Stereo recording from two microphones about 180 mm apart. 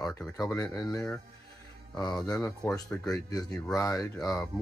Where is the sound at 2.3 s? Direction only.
20° left (ahead or behind).